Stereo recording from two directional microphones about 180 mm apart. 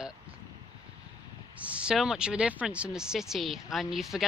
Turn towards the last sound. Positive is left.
turn(degrees=0)  # may be behind; listen again after turning